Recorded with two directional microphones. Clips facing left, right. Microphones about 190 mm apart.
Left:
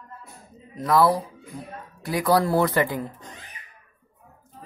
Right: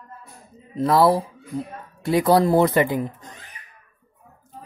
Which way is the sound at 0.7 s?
30° right (ahead or behind).